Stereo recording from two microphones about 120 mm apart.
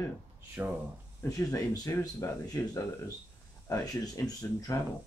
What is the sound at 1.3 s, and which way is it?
Speech, 30° left (ahead or behind).